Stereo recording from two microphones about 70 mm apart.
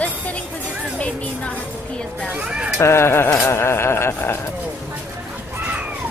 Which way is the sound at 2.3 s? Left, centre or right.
Centre.